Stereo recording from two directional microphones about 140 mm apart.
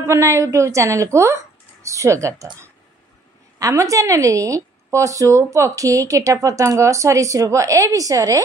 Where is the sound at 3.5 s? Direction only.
25° right (ahead or behind).